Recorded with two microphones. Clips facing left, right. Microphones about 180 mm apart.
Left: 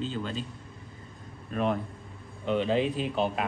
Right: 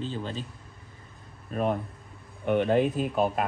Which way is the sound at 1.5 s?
45° right (ahead or behind).